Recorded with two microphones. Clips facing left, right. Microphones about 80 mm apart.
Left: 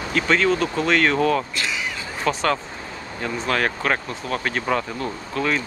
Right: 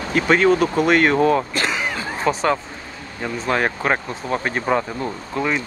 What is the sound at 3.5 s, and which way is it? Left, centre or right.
Speech, centre.